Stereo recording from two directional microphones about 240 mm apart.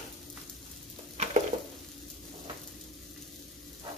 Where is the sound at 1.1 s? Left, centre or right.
Right.